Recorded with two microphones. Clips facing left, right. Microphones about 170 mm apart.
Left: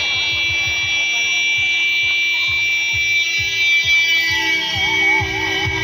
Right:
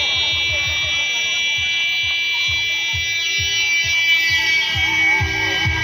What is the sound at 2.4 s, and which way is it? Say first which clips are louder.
Music: left 2 dB; 20° left (ahead or behind).